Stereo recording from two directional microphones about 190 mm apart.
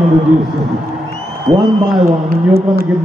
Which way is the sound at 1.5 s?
Centre (ahead or behind).